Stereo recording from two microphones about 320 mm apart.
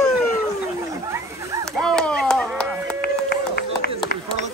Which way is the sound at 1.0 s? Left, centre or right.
Centre.